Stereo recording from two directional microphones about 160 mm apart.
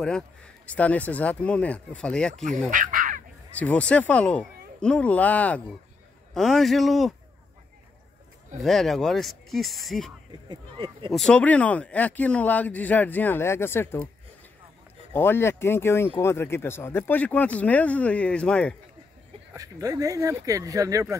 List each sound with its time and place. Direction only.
0.7 s speech: 10° left (ahead or behind)
2.7 s dog: 60° right (ahead or behind)
3.5 s speech: 10° left (ahead or behind)
8.5 s speech: centre (ahead or behind)
10.5 s speech: 30° right (ahead or behind)
11.1 s speech: 5° left (ahead or behind)
15.1 s speech: 15° left (ahead or behind)
19.5 s speech: 20° right (ahead or behind)